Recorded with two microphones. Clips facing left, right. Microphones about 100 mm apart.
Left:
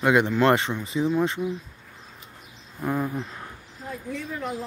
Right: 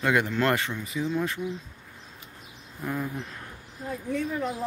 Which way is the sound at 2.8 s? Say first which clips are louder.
Left 5 dB; 30° left (ahead or behind).